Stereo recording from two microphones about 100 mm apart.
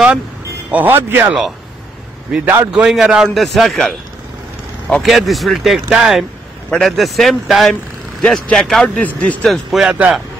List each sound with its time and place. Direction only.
0.7 s speech: 20° right (ahead or behind)
2.3 s a man's voice: 10° right (ahead or behind)